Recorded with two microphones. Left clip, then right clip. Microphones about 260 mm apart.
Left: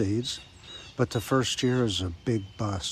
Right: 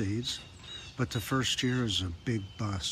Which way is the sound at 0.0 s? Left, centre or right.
Centre.